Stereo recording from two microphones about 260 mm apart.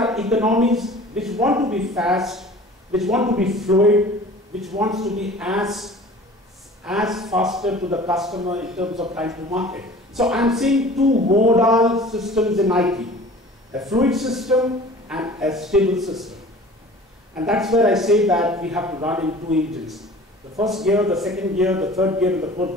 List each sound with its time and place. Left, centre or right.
0.0 s a man's voice: centre
11.1 s a sound: right
11.4 s a man's voice: centre
17.4 s a man's voice: centre